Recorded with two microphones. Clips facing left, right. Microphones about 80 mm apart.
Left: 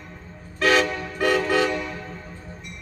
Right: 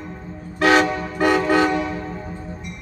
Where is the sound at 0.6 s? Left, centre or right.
Right.